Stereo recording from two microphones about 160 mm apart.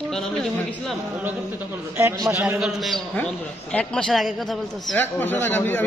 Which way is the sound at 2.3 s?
15° right (ahead or behind).